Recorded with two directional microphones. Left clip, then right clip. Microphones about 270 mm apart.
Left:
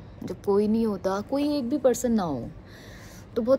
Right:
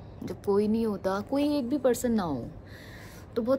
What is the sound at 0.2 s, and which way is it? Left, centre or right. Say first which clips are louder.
Speech: left 3 dB; centre.